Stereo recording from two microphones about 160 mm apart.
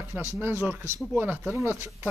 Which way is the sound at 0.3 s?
15° right (ahead or behind).